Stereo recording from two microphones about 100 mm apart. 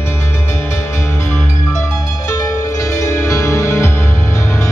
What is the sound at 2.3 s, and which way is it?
Music, 30° left (ahead or behind).